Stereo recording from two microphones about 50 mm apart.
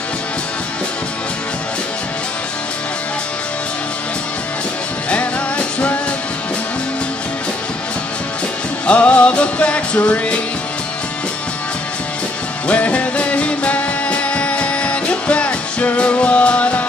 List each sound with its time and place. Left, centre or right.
5.1 s music: left
8.8 s music: left
12.6 s music: left